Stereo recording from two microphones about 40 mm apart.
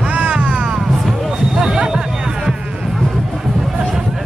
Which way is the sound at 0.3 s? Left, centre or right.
Right.